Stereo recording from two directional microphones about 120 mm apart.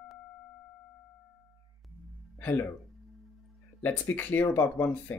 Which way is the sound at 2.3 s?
15° left (ahead or behind).